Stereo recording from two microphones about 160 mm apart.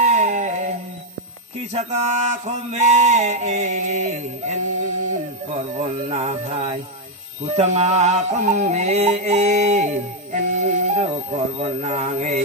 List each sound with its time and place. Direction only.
0.0 s music: 45° right (ahead or behind)
1.7 s mantra: 45° right (ahead or behind)
5.8 s mantra: 45° right (ahead or behind)